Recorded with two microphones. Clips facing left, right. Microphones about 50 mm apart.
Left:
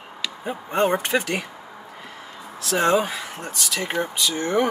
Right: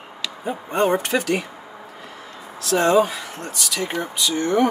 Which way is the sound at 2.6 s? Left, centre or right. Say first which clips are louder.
Right 3 dB; centre.